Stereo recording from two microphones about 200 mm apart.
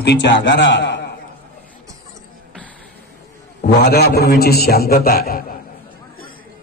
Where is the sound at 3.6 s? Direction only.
55° left (ahead or behind).